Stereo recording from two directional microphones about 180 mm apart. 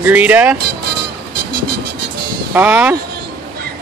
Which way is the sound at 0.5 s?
60° right (ahead or behind).